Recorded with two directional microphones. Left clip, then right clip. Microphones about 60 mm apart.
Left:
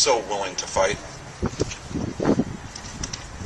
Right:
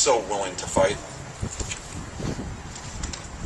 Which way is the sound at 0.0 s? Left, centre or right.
Left.